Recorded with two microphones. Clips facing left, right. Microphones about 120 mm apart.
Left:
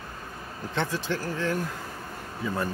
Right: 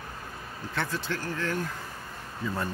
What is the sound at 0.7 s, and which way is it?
Speech, 20° left (ahead or behind).